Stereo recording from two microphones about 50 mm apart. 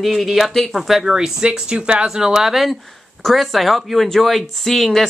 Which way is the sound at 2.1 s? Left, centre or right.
Centre.